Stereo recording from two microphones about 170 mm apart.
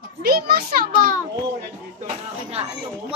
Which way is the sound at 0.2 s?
60° right (ahead or behind).